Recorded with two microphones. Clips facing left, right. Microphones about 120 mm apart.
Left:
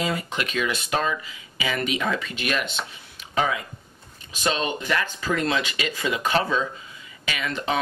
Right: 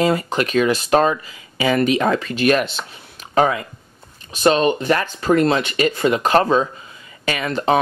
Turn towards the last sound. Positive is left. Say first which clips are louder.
# right 8 dB
turn(degrees=-40)  # may be behind; listen again after turning